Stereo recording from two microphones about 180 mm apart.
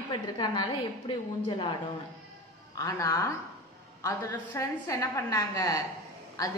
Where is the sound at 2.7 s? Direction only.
20° left (ahead or behind).